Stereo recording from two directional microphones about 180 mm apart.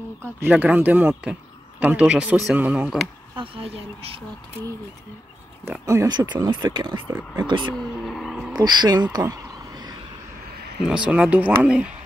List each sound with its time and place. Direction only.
0.4 s speech: 10° right (ahead or behind)
3.3 s speech: 30° right (ahead or behind)
5.7 s speech: 15° right (ahead or behind)
7.1 s speech: 10° right (ahead or behind)
7.7 s a sound: centre (ahead or behind)
8.5 s speech: 25° right (ahead or behind)
9.1 s a sound: 20° right (ahead or behind)
10.9 s speech: 5° right (ahead or behind)